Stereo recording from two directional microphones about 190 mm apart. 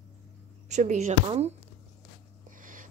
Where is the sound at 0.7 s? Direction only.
40° right (ahead or behind).